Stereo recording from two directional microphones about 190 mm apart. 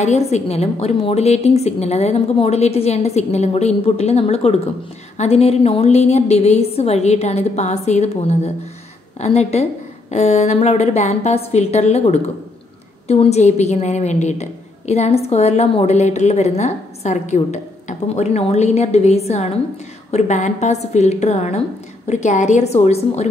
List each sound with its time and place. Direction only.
0.0 s a woman's voice: 35° left (ahead or behind)